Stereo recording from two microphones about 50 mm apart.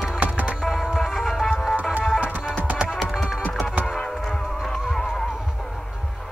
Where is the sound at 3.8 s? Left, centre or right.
Centre.